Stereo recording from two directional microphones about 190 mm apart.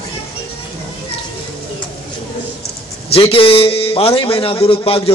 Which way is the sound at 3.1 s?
30° left (ahead or behind).